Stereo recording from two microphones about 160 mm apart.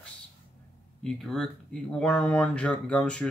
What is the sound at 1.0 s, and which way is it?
Speech, centre (ahead or behind).